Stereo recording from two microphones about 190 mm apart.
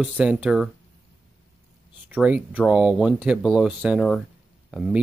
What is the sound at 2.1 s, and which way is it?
Speech, 5° right (ahead or behind).